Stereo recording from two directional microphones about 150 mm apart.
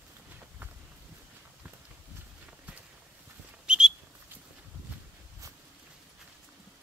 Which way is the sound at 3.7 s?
5° right (ahead or behind).